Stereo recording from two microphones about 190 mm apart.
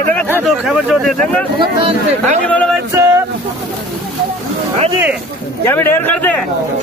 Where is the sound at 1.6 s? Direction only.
35° right (ahead or behind).